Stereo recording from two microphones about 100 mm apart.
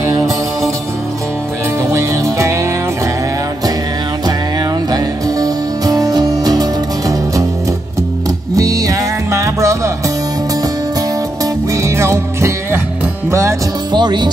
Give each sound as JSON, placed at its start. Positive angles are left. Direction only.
{"t": 1.8, "sound": "music", "side_deg": -30}
{"t": 4.9, "sound": "music", "side_deg": -40}
{"t": 8.5, "sound": "music", "side_deg": -35}
{"t": 11.7, "sound": "music", "side_deg": -30}
{"t": 13.9, "sound": "music", "side_deg": -45}